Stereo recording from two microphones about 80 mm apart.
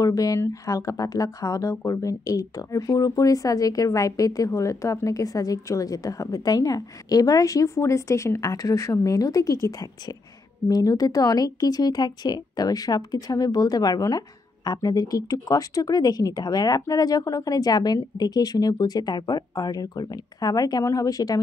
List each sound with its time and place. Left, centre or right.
0.0 s speech: left